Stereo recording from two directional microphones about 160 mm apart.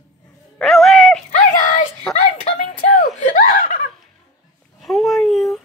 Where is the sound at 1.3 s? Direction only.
50° left (ahead or behind).